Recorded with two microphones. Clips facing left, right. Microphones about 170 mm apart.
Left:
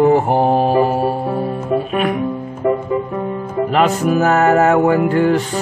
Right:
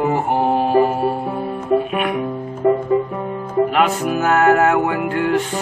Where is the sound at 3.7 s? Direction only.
35° left (ahead or behind).